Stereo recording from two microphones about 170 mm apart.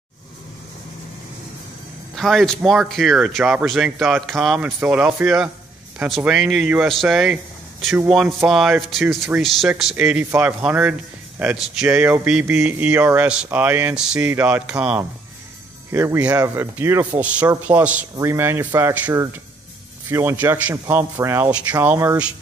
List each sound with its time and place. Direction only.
2.1 s speech: centre (ahead or behind); by 22.2 s 15° right (ahead or behind)